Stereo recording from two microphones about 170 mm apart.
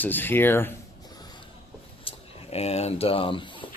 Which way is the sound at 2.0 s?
35° left (ahead or behind).